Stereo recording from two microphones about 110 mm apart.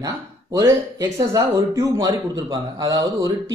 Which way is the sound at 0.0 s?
30° right (ahead or behind).